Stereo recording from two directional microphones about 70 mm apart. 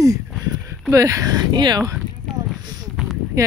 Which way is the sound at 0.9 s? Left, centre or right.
Right.